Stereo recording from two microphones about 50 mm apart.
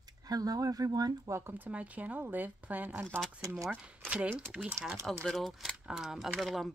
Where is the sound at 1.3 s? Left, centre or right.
Right.